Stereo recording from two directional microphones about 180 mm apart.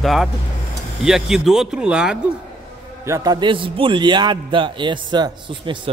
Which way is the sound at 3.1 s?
20° right (ahead or behind).